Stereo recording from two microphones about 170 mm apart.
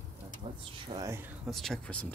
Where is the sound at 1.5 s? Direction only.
Centre (ahead or behind).